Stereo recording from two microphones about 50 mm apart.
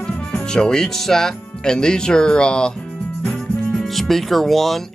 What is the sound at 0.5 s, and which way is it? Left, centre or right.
Speech, centre.